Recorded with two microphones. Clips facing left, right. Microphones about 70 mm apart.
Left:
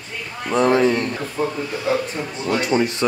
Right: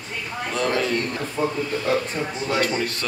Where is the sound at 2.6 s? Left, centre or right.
Left.